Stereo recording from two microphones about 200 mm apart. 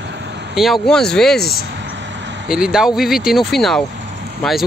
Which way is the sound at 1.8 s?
60° right (ahead or behind).